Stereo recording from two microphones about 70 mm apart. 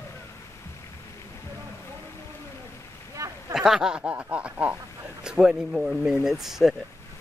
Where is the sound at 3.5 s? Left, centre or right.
Centre.